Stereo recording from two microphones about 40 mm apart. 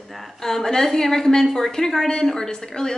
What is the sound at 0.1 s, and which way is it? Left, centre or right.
A woman's voice, centre.